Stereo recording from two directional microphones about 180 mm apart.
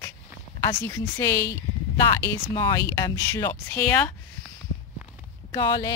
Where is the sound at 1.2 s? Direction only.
20° left (ahead or behind).